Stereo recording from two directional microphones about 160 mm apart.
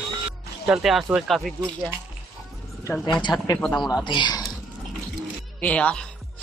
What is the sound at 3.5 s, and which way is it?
Speech, 5° left (ahead or behind).